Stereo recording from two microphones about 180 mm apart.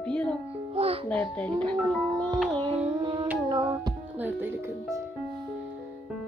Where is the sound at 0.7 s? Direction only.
35° right (ahead or behind).